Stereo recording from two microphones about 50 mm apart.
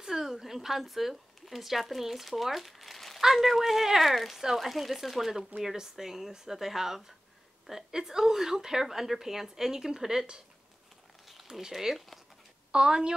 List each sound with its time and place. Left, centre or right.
0.0 s a woman's voice: centre
11.2 s a woman's voice: centre